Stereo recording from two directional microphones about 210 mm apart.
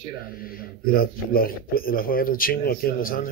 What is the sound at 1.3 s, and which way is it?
A man's voice, 45° left (ahead or behind).